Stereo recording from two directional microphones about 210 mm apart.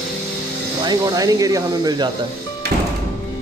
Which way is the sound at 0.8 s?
20° right (ahead or behind).